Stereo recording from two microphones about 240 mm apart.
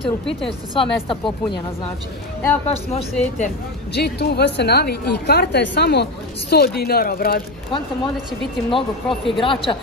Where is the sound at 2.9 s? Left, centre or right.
Left.